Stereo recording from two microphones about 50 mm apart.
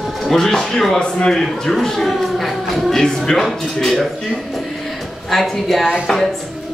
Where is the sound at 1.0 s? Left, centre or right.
Centre.